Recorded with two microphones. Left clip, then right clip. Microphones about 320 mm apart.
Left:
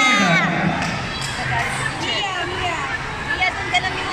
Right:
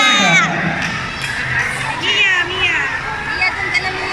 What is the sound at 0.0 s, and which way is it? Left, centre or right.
Crowd, left.